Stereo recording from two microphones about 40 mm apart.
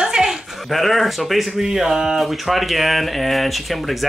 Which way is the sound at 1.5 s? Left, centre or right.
Centre.